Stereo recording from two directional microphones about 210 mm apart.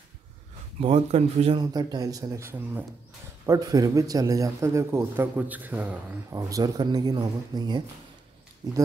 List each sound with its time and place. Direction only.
0.7 s a man's voice: 30° right (ahead or behind)